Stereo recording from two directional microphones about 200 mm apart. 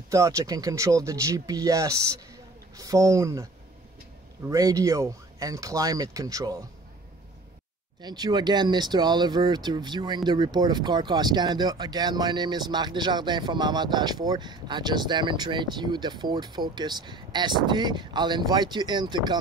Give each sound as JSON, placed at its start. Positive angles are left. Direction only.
{"t": 0.1, "sound": "speech", "side_deg": -15}
{"t": 4.5, "sound": "speech", "side_deg": -15}
{"t": 8.0, "sound": "speech", "side_deg": -20}